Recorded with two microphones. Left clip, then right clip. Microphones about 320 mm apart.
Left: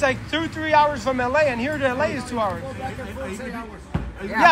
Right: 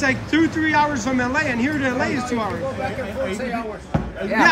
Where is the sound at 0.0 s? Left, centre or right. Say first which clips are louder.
Right 3 dB; centre.